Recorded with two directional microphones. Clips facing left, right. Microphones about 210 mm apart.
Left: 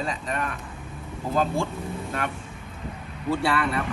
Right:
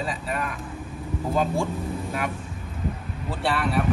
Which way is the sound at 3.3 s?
Centre (ahead or behind).